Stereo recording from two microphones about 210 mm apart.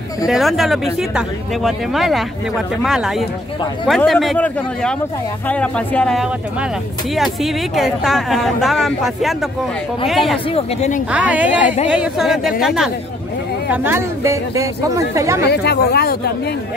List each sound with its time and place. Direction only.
0.3 s speech: centre (ahead or behind)
10.5 s speech: 30° left (ahead or behind)
11.1 s speech: 5° right (ahead or behind)
11.6 s speech: 35° left (ahead or behind)
11.9 s speech: 5° right (ahead or behind)
15.4 s speech: 50° left (ahead or behind)